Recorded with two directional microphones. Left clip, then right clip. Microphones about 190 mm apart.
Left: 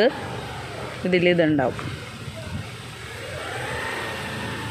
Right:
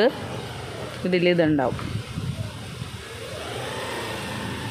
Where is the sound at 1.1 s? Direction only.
Centre (ahead or behind).